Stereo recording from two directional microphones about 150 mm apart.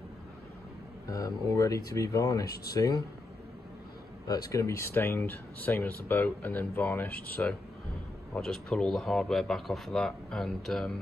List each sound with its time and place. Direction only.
1.0 s speech: 20° left (ahead or behind)
2.4 s speech: 90° left
2.7 s speech: 25° left (ahead or behind)
4.3 s speech: 20° left (ahead or behind); by 10.9 s centre (ahead or behind)